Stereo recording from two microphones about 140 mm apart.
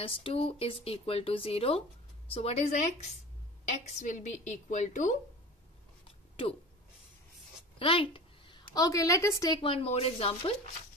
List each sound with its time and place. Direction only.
0.0 s a woman's voice: 40° left (ahead or behind); by 5.1 s 60° left (ahead or behind)
7.8 s a woman's voice: 40° left (ahead or behind); by 9.6 s 20° left (ahead or behind)
9.6 s speech: 40° left (ahead or behind)